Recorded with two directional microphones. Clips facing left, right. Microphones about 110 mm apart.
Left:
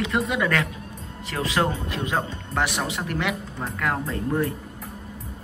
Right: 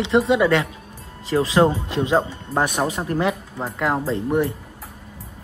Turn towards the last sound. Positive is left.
turn(degrees=-25)  # may be behind; listen again after turning